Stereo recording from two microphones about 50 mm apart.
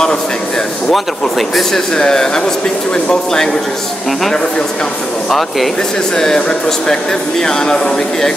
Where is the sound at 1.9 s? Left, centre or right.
Centre.